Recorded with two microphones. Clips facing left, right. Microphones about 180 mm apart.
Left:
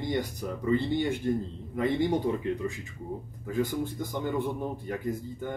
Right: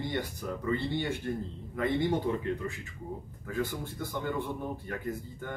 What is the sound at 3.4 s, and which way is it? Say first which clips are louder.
Speech: left 5 dB; 15° left (ahead or behind).